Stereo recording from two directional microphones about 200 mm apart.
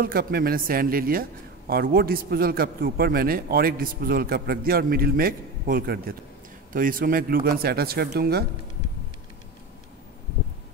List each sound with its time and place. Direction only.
0.0 s a man's voice: 50° right (ahead or behind)